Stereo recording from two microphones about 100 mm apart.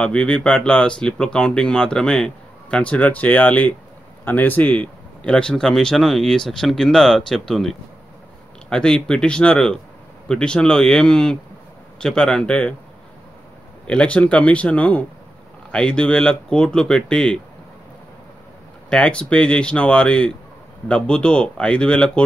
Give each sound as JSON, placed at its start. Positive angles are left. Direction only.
{"t": 0.0, "sound": "speech", "side_deg": 10}
{"t": 13.8, "sound": "speech", "side_deg": 10}
{"t": 18.9, "sound": "speech", "side_deg": 10}